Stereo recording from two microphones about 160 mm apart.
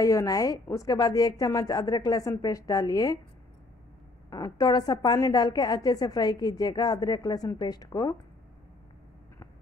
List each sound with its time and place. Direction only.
0.0 s a woman's voice: 20° left (ahead or behind)
4.3 s a woman's voice: 25° left (ahead or behind)